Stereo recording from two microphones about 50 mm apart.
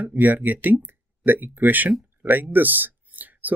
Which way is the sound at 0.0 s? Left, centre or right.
Right.